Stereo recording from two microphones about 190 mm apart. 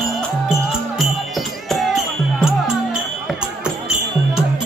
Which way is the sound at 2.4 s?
5° right (ahead or behind).